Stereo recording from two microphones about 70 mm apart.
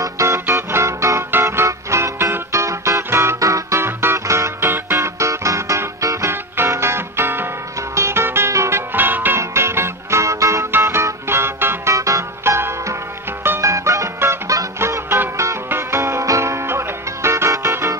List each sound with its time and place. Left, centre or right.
0.0 s music: right
3.8 s music: right
8.9 s music: right
9.4 s music: right
11.9 s music: right